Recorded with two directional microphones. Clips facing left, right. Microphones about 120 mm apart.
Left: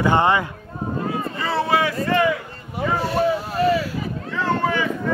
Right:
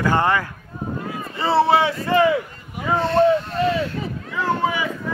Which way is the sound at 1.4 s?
30° right (ahead or behind).